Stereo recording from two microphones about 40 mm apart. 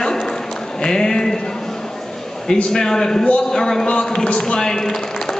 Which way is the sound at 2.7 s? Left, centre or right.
Centre.